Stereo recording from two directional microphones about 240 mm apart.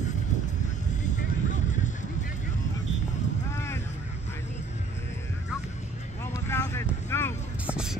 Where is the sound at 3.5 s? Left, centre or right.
Centre.